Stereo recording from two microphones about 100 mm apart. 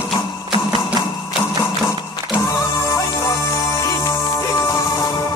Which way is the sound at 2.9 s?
30° left (ahead or behind).